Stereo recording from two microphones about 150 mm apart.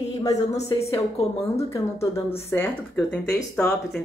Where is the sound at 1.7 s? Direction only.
20° left (ahead or behind).